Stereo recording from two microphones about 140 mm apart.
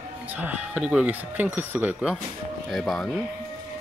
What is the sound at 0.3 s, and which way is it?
Speech, 10° right (ahead or behind).